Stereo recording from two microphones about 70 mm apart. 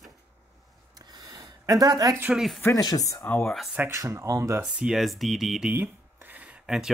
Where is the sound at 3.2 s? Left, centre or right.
Left.